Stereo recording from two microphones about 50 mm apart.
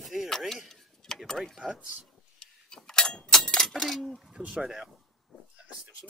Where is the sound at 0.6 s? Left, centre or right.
Centre.